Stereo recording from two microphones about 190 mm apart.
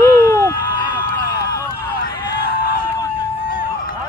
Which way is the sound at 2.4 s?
55° left (ahead or behind).